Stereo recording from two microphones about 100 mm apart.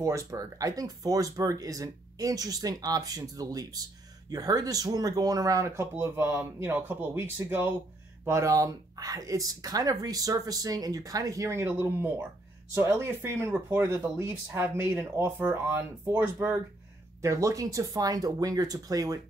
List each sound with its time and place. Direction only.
0.0 s speech: 30° right (ahead or behind)
8.3 s speech: 30° right (ahead or behind)
17.2 s speech: 30° right (ahead or behind)